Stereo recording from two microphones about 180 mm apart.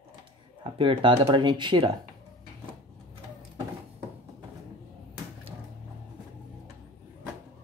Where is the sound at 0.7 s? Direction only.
30° right (ahead or behind).